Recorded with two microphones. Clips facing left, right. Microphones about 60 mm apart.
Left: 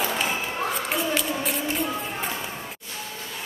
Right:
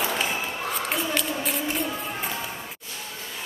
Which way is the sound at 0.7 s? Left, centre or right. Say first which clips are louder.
Even; centre.